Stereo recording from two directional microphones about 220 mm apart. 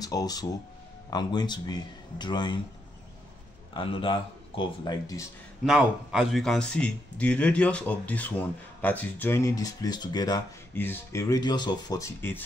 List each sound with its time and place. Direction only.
0.0 s speech: 15° left (ahead or behind)
3.7 s speech: 25° left (ahead or behind)
5.7 s a man's voice: 5° right (ahead or behind)